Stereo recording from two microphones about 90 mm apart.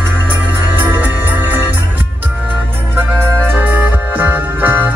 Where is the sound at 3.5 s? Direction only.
20° right (ahead or behind).